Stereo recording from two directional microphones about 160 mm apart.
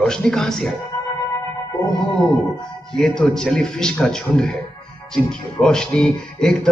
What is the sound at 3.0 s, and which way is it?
Speech, 5° left (ahead or behind).